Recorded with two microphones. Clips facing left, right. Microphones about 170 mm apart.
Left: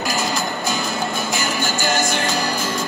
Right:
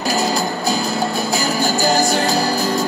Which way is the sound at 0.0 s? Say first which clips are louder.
Right 4 dB; 40° right (ahead or behind).